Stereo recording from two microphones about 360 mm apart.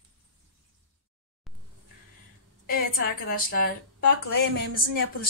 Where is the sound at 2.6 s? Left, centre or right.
Left.